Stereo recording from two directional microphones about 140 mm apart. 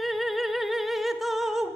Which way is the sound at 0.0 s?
Centre (ahead or behind).